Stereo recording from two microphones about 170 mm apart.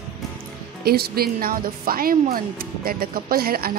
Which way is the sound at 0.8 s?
65° right (ahead or behind).